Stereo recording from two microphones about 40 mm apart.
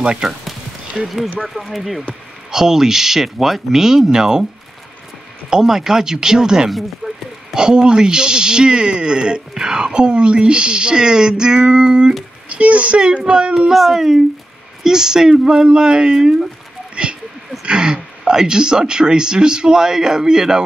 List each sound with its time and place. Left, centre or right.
0.0 s speech: centre
1.0 s speech: centre
5.5 s speech: centre
7.0 s a sound: centre
7.5 s speech: right
12.4 s a child's voice: right
13.6 s speech: centre
16.9 s a sound: right
17.6 s speech: right